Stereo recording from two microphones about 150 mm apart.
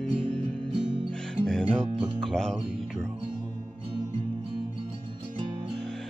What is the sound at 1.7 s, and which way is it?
Speech, 40° right (ahead or behind).